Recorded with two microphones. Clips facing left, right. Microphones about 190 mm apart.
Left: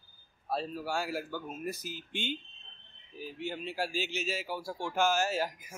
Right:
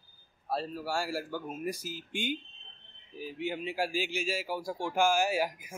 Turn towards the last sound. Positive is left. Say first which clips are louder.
# right 2 dB
turn(degrees=-10)  # may be behind; listen again after turning